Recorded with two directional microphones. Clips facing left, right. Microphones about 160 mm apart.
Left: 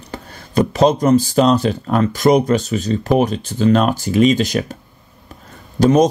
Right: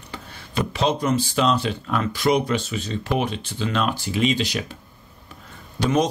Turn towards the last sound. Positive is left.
turn(degrees=45)  # may be behind; listen again after turning